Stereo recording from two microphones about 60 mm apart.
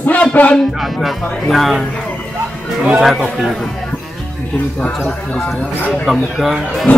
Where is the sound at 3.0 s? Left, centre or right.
Centre.